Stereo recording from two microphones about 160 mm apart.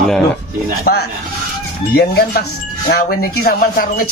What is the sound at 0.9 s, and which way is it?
Speech, 65° left (ahead or behind).